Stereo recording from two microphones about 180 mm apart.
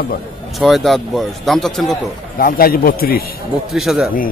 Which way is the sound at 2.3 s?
55° left (ahead or behind).